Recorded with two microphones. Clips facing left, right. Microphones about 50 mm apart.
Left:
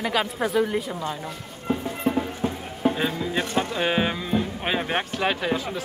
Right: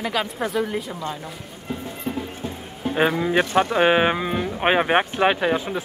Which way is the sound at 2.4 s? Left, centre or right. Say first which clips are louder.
Left 4 dB; left.